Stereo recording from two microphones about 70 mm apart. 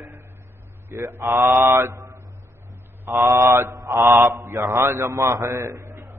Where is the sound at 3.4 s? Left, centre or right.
Right.